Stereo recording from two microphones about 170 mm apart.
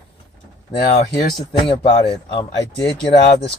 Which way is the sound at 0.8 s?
50° left (ahead or behind).